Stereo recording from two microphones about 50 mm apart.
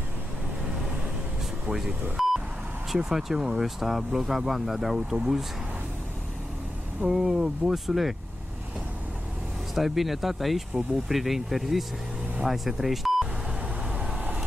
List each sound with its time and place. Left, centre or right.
2.2 s vehicle: centre
2.9 s speech: centre
7.0 s speech: centre
9.8 s speech: centre
13.9 s vehicle: right